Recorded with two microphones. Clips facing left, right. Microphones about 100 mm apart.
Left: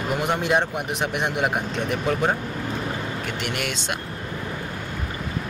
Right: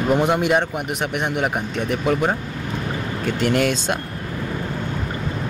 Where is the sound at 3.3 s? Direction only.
35° right (ahead or behind).